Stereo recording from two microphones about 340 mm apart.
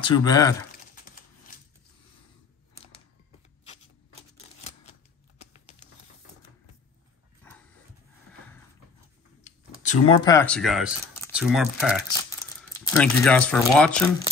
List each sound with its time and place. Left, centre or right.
0.0 s speech: centre
5.4 s typing: centre
7.4 s dog: centre
9.4 s speech: centre